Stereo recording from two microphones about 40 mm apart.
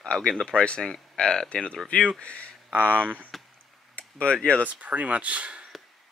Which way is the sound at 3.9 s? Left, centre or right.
Left.